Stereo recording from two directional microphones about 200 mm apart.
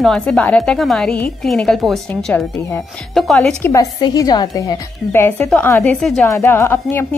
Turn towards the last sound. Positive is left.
turn(degrees=10)  # may be behind; listen again after turning